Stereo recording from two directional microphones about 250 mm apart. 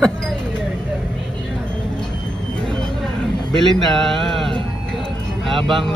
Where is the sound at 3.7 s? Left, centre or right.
Centre.